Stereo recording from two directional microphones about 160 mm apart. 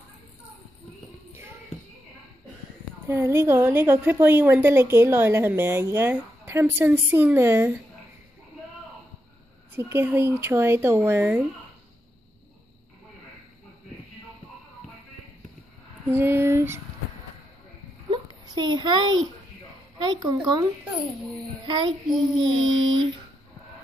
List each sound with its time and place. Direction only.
3.1 s a woman's voice: 15° right (ahead or behind)
9.8 s a woman's voice: 15° right (ahead or behind)
16.1 s a woman's voice: 15° right (ahead or behind)
18.1 s a sound: 30° right (ahead or behind)
20.0 s speech: 30° right (ahead or behind)
21.6 s a sound: 30° right (ahead or behind)